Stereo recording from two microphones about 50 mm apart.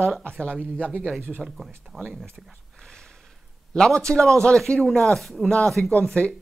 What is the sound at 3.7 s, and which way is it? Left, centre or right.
A man's voice, centre.